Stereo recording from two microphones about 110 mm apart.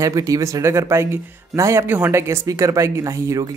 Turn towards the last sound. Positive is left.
turn(degrees=-30)  # may be behind; listen again after turning